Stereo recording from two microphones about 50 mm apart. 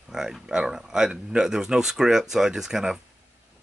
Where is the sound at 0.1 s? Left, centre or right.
Centre.